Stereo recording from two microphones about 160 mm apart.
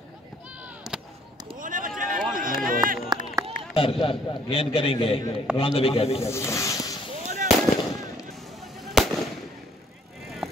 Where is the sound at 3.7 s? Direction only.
35° left (ahead or behind).